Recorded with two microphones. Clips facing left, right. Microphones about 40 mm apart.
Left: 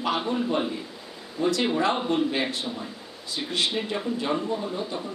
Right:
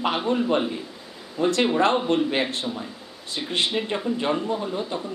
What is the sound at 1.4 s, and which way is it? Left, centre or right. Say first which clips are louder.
Speech: right 3 dB; right.